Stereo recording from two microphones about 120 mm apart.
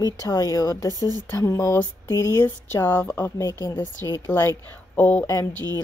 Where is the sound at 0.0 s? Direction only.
30° left (ahead or behind).